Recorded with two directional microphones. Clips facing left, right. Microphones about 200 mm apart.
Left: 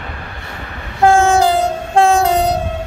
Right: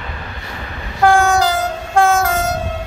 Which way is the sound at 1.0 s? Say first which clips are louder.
Left 2 dB; 25° left (ahead or behind).